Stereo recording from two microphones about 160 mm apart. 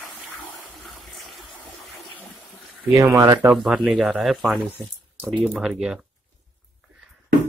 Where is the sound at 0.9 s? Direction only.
Centre (ahead or behind).